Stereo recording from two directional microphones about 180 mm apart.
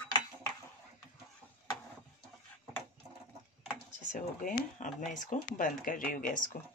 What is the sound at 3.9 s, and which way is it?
Speech, 45° left (ahead or behind).